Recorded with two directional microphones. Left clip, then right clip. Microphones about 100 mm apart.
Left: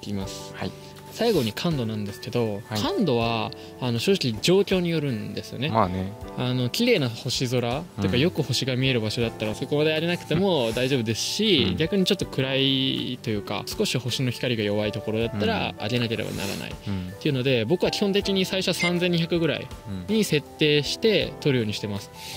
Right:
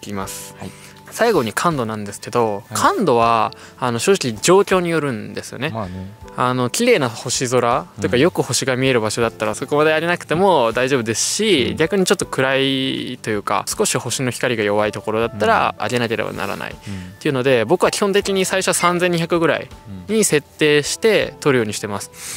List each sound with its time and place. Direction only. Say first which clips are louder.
1.4 s speech: right 9 dB; 35° right (ahead or behind)